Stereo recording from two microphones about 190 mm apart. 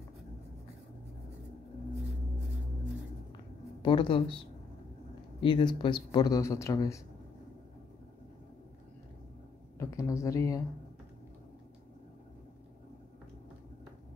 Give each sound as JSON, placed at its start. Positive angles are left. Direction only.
{"t": 3.8, "sound": "speech", "side_deg": 25}
{"t": 5.4, "sound": "speech", "side_deg": 25}
{"t": 9.8, "sound": "speech", "side_deg": 15}